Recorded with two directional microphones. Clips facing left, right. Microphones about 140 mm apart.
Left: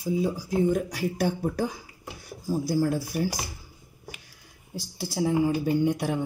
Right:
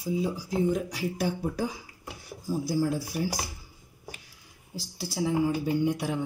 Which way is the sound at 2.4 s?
50° left (ahead or behind).